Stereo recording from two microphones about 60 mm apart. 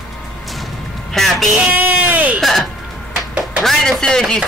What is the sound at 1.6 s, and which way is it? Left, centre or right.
Speech, right.